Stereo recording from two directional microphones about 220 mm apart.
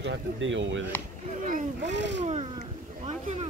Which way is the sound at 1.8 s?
55° right (ahead or behind).